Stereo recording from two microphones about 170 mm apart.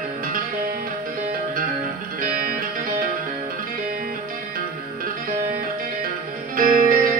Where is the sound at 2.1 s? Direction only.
55° right (ahead or behind).